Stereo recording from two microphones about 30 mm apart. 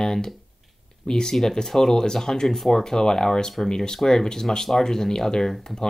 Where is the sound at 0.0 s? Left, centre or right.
Centre.